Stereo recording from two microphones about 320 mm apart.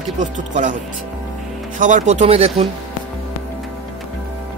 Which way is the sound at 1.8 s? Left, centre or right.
Right.